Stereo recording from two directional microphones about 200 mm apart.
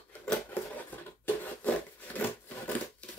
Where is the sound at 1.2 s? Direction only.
10° left (ahead or behind).